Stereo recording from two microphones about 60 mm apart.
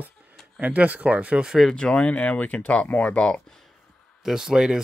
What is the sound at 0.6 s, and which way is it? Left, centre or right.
Speech, right.